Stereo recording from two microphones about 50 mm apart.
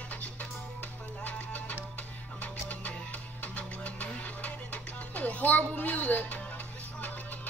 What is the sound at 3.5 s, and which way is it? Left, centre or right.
Music, left.